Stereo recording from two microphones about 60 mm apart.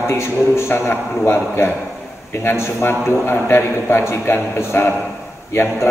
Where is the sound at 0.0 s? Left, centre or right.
Left.